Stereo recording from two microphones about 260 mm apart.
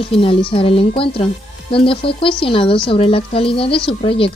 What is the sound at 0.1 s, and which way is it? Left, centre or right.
Speech, left.